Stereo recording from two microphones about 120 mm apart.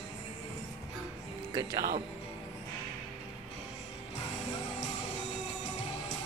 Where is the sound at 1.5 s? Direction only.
35° right (ahead or behind).